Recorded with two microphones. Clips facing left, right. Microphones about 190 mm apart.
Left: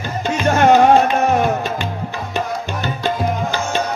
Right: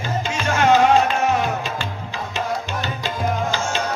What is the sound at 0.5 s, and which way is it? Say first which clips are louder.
Music: left 4 dB; 55° left (ahead or behind).